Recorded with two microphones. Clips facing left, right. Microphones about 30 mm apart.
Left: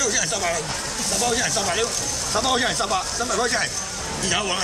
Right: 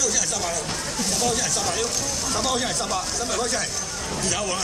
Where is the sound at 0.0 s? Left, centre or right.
Left.